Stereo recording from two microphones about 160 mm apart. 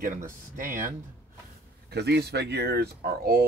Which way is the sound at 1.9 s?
90° right.